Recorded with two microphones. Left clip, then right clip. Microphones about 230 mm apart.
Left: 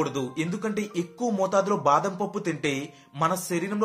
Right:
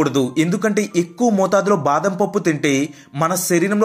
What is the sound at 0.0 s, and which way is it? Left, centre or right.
Speech, centre.